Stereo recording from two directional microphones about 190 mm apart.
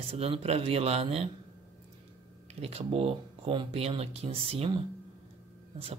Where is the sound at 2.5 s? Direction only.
30° right (ahead or behind).